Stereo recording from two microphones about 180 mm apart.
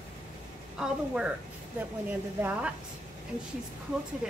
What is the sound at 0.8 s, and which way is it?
Speech, 5° right (ahead or behind).